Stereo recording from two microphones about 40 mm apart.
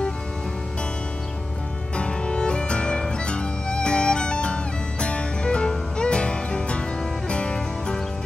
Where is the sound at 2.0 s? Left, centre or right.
Left.